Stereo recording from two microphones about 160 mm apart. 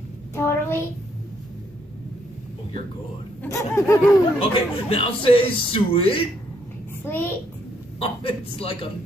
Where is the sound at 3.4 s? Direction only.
15° left (ahead or behind).